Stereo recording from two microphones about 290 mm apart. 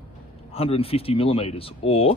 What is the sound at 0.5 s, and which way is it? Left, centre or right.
Speech, centre.